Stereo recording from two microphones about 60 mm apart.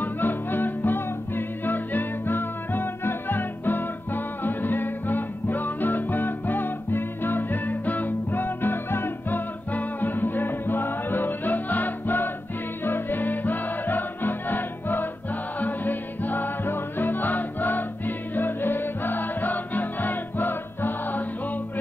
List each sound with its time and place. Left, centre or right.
0.0 s music: left